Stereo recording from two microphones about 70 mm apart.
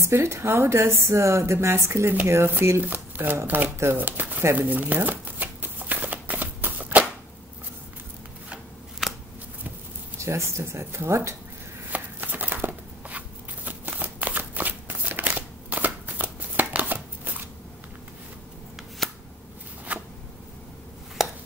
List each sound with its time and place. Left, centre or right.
0.0 s a woman's voice: right
2.8 s a woman's voice: right
4.0 s speech: right
4.6 s shuffling cards: right
9.0 s scissors: centre
10.1 s a woman's voice: right
11.9 s chopping: right
13.7 s shuffling cards: right
19.0 s shuffling cards: centre
19.9 s a sound: right
21.2 s a sound: centre